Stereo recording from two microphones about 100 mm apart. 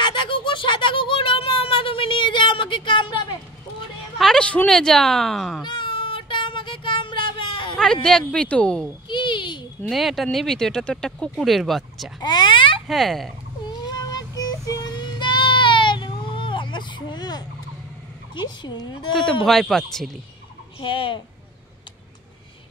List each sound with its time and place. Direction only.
0.0 s a sound: 50° left (ahead or behind)
4.2 s speech: 10° left (ahead or behind)
5.6 s child singing: 50° left (ahead or behind)
7.7 s speech: 5° left (ahead or behind)
9.1 s a sound: 55° left (ahead or behind)
9.8 s speech: centre (ahead or behind)
12.2 s a sound: 45° left (ahead or behind)
12.8 s speech: centre (ahead or behind)
13.7 s music: 40° left (ahead or behind)
18.3 s a woman's voice: 50° left (ahead or behind)
19.4 s speech: centre (ahead or behind)
20.8 s speech: 55° left (ahead or behind)